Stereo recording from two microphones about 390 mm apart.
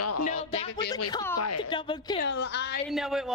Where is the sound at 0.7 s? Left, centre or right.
Left.